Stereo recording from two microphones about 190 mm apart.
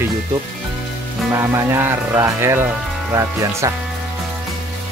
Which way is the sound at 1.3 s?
15° right (ahead or behind).